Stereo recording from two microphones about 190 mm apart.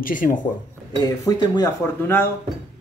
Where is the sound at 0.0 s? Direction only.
45° left (ahead or behind).